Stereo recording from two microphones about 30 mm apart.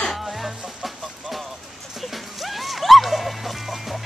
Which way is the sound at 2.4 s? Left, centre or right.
Centre.